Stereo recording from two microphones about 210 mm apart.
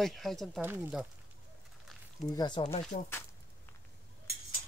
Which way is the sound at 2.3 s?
20° left (ahead or behind).